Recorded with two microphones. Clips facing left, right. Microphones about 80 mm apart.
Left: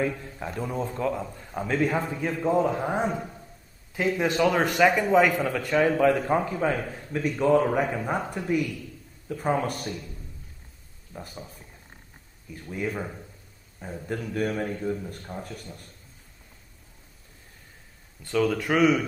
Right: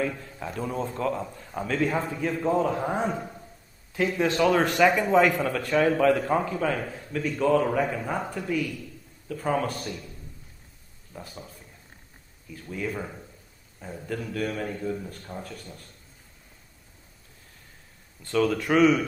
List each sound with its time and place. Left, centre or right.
0.0 s a man's voice: centre
0.6 s a man's voice: centre
6.0 s a man's voice: centre
11.1 s a man's voice: centre
12.7 s a man's voice: centre
18.2 s speech: centre